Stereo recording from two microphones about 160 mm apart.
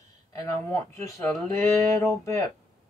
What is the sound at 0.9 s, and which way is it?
Speech, 15° left (ahead or behind).